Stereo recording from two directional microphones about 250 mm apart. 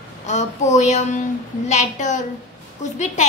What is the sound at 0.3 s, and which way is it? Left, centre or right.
A woman's voice, left.